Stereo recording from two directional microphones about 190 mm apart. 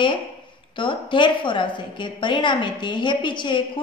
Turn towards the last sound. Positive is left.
turn(degrees=25)  # may be behind; listen again after turning